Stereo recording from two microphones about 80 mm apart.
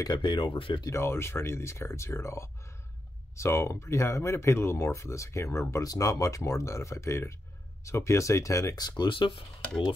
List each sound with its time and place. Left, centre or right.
0.2 s speech: left
0.8 s speech: left
8.8 s speech: left